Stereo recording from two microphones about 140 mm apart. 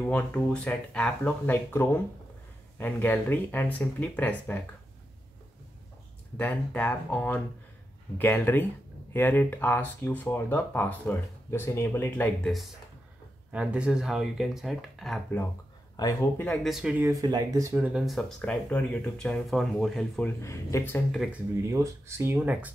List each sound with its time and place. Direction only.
0.0 s speech: 10° left (ahead or behind)
6.3 s speech: 10° left (ahead or behind)
13.5 s speech: 10° right (ahead or behind)
16.0 s speech: 25° left (ahead or behind)
16.6 s speech: 5° right (ahead or behind)
17.0 s speech: 25° right (ahead or behind)
17.7 s speech: 10° right (ahead or behind)
18.0 s speech: 5° left (ahead or behind)
20.2 s speech: 20° left (ahead or behind)
21.7 s speech: 20° right (ahead or behind)